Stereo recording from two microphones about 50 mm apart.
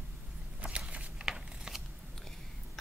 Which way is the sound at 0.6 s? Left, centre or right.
Right.